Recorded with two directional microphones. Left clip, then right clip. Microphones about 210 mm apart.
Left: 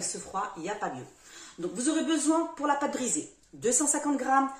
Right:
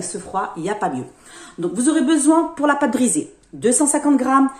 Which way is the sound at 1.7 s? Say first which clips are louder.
Right 11 dB; 30° right (ahead or behind).